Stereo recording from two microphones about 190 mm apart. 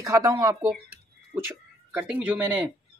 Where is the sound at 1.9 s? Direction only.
5° right (ahead or behind).